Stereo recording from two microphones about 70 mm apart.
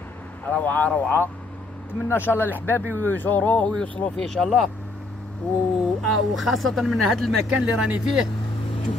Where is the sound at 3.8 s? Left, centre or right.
Centre.